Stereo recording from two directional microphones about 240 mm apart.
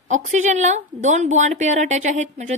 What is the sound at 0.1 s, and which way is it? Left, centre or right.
A woman's voice, right.